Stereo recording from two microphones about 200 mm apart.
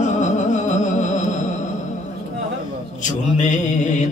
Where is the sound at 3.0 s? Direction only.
40° left (ahead or behind).